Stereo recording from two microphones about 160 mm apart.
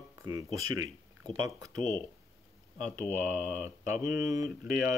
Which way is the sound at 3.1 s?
15° right (ahead or behind).